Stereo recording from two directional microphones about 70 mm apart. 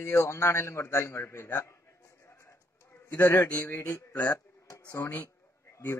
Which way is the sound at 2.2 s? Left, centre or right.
Left.